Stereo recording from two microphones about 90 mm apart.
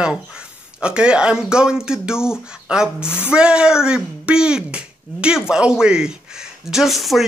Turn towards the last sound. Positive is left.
turn(degrees=0)  # may be behind; listen again after turning